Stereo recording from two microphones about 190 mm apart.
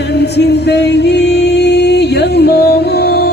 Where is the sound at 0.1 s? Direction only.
60° left (ahead or behind).